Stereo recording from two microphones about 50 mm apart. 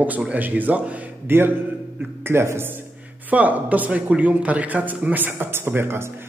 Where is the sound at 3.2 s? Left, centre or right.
Right.